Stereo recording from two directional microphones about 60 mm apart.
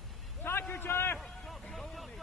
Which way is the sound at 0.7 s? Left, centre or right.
Left.